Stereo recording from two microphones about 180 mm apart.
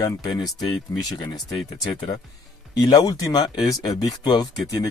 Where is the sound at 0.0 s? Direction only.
20° left (ahead or behind).